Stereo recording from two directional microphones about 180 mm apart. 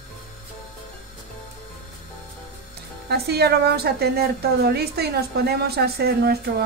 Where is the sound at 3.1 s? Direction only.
65° right (ahead or behind).